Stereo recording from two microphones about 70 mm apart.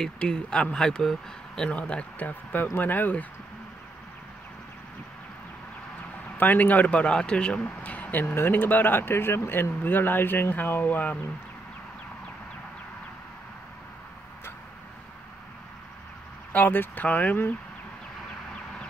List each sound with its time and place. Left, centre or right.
0.0 s speech: centre
2.2 s speech: left
6.3 s speech: left
16.5 s speech: left